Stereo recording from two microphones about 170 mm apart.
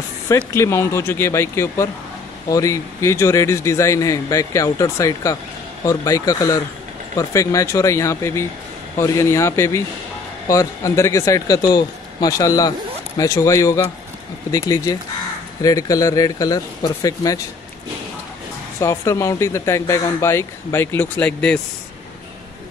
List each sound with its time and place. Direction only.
0.6 s a man's voice: 15° left (ahead or behind)
18.8 s a man's voice: 15° left (ahead or behind)